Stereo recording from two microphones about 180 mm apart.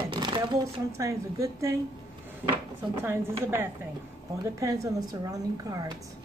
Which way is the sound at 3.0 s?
15° right (ahead or behind).